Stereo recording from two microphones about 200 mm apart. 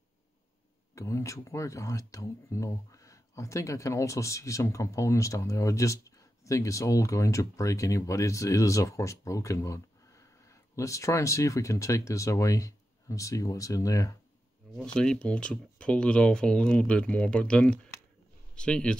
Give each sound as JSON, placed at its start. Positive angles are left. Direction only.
{"t": 0.9, "sound": "speech", "side_deg": 15}
{"t": 15.0, "sound": "speech", "side_deg": 5}